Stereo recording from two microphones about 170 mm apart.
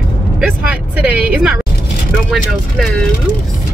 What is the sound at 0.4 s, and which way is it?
Speech, 10° right (ahead or behind).